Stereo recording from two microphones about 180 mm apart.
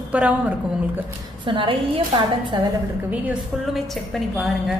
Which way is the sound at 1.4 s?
25° right (ahead or behind).